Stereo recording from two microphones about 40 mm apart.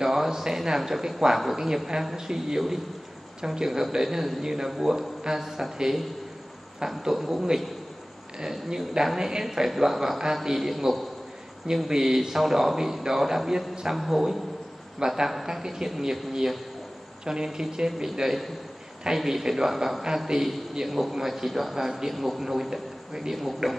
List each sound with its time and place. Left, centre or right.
0.0 s a man's voice: centre